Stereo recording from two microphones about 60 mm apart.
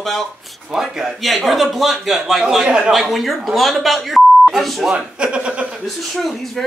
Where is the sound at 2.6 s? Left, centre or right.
Centre.